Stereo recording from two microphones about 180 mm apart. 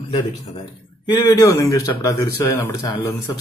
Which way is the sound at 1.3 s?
15° left (ahead or behind).